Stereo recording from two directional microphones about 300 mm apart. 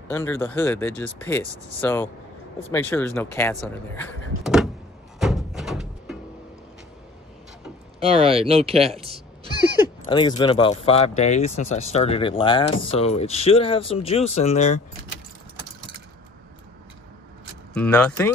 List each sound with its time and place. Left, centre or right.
0.1 s speech: centre
5.2 s music: centre
8.0 s speech: centre
10.0 s speech: centre
17.7 s speech: centre